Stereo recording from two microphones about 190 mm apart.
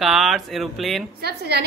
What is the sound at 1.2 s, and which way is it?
Speech, 60° right (ahead or behind).